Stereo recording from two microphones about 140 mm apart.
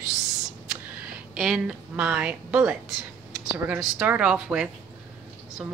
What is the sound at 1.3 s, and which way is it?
A woman's voice, 5° right (ahead or behind).